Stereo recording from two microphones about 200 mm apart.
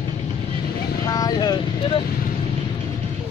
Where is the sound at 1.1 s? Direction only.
20° left (ahead or behind).